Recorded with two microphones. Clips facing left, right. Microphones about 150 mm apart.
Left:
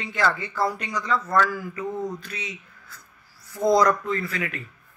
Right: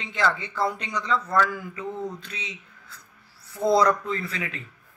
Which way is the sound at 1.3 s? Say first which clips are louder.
Left 2 dB; 20° right (ahead or behind).